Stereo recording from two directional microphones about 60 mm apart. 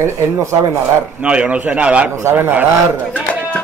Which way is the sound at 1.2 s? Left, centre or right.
Centre.